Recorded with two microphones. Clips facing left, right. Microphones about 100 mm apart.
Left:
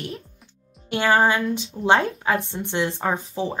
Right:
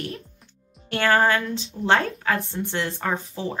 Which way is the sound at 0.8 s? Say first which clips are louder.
Left 1 dB; 15° left (ahead or behind).